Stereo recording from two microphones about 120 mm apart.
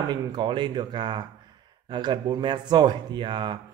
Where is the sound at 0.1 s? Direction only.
40° right (ahead or behind).